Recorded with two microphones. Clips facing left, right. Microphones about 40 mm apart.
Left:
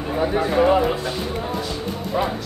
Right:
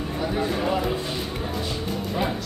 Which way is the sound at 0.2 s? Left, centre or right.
Left.